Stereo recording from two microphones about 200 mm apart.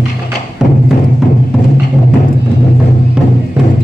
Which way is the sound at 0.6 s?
5° right (ahead or behind).